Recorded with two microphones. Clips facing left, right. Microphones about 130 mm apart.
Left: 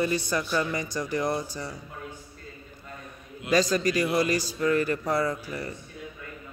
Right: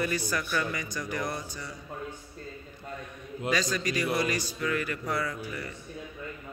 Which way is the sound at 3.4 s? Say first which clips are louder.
Left 6 dB; 40° left (ahead or behind).